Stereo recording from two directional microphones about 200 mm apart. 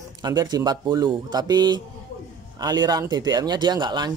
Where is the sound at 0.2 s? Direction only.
20° right (ahead or behind).